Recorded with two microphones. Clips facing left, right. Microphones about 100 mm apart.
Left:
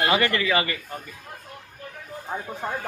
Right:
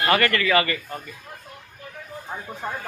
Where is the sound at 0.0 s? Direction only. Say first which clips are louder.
Right 1 dB; 15° left (ahead or behind).